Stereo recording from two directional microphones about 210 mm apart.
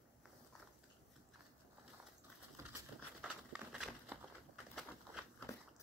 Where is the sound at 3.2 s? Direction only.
5° right (ahead or behind).